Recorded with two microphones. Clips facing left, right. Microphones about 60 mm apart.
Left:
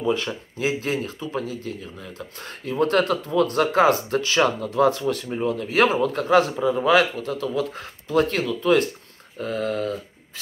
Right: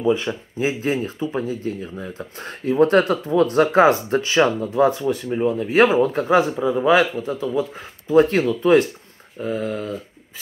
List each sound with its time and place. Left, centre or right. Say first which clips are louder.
0.0 s speech: right 4 dB; centre
5.4 s speech: right 4 dB; right
6.2 s speech: right 1 dB; centre
8.1 s speech: right 6 dB; right
9.4 s speech: even; centre